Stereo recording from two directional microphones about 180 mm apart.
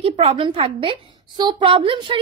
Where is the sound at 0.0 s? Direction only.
35° right (ahead or behind).